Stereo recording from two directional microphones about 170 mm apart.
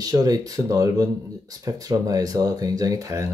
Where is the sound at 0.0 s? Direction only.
20° right (ahead or behind).